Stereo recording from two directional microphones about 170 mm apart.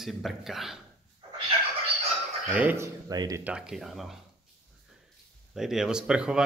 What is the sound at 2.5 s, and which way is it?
Speech, 10° right (ahead or behind).